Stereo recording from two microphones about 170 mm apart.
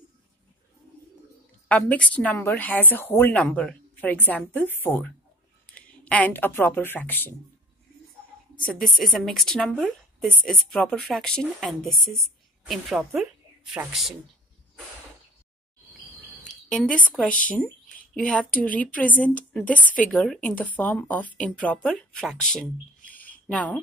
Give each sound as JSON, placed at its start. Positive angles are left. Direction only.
{"t": 1.7, "sound": "a woman's voice", "side_deg": 10}
{"t": 8.7, "sound": "a woman's voice", "side_deg": 0}
{"t": 16.6, "sound": "a woman's voice", "side_deg": 5}
{"t": 18.5, "sound": "a woman's voice", "side_deg": 55}
{"t": 18.8, "sound": "a woman's voice", "side_deg": 10}